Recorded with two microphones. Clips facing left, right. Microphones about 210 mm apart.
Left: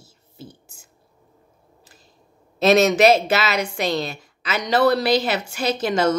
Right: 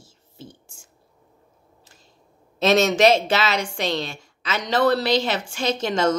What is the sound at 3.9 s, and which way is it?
Speech, 40° left (ahead or behind).